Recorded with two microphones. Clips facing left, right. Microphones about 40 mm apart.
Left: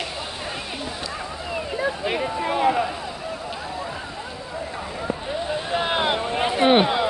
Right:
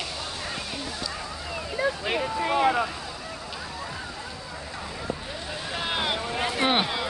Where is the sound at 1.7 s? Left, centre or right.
Centre.